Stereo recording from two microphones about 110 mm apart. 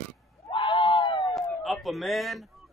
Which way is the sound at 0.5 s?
50° left (ahead or behind).